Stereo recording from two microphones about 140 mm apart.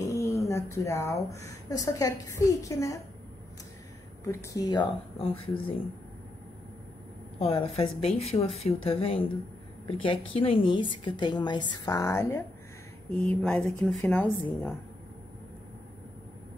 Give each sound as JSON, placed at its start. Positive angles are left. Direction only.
{"t": 0.0, "sound": "speech", "side_deg": 20}
{"t": 4.2, "sound": "speech", "side_deg": 20}
{"t": 5.2, "sound": "a woman's voice", "side_deg": 40}
{"t": 7.3, "sound": "a woman's voice", "side_deg": 45}
{"t": 13.2, "sound": "speech", "side_deg": 5}